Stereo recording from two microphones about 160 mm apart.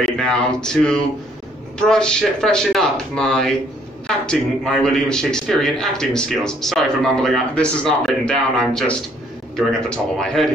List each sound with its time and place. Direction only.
0.2 s speech: 5° left (ahead or behind)